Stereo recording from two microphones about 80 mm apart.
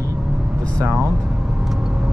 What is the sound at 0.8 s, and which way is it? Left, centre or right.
Speech, right.